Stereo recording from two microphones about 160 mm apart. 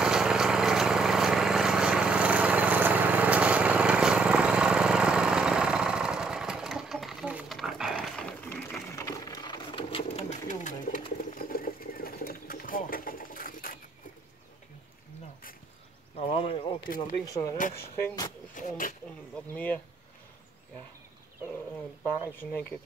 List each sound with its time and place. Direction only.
0.0 s lawn mower: 5° right (ahead or behind); by 10.2 s 35° left (ahead or behind)
10.5 s bird: 50° left (ahead or behind)
11.2 s sewing machine: 60° left (ahead or behind)
16.2 s a sound: 35° left (ahead or behind)
17.0 s speech: 20° left (ahead or behind)
18.5 s a sound: 55° left (ahead or behind)
19.5 s speech: 10° left (ahead or behind)
22.4 s speech: 10° left (ahead or behind)